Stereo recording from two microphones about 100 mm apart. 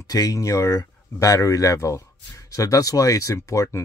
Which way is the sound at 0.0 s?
35° left (ahead or behind).